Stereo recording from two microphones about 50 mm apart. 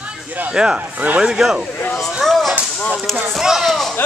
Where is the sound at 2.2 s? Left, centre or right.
Centre.